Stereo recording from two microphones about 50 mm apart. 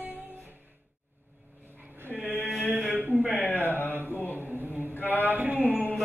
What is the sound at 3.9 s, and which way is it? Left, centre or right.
Mantra, right.